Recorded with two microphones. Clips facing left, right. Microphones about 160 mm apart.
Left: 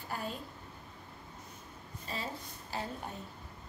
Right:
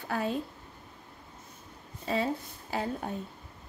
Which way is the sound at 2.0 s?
65° right (ahead or behind).